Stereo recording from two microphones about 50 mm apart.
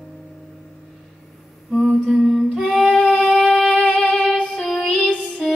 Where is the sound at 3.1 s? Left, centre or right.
Centre.